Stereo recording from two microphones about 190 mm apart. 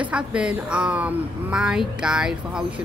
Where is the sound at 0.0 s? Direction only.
5° right (ahead or behind).